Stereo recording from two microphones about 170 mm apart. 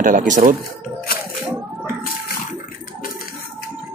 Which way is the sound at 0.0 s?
50° right (ahead or behind).